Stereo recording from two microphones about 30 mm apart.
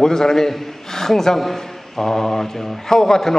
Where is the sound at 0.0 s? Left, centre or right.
Centre.